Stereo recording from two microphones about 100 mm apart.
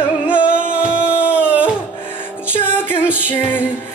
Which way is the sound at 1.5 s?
15° right (ahead or behind).